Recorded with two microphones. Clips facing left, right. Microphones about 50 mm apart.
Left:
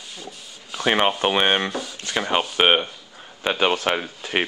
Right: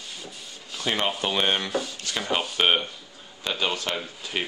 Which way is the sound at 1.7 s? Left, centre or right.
Centre.